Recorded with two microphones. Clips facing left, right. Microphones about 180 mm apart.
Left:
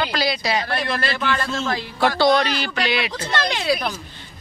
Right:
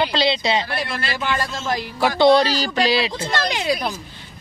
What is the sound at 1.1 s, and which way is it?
A man's voice, 10° right (ahead or behind).